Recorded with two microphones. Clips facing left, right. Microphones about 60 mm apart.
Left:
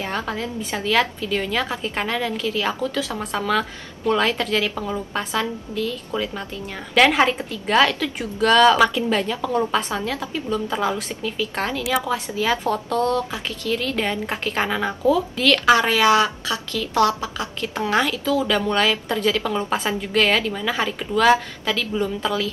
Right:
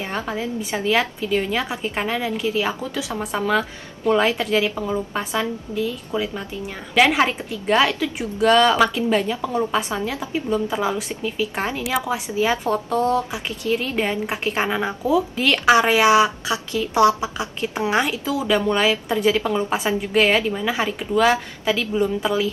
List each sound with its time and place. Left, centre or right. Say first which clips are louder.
0.0 s a woman's voice: even; centre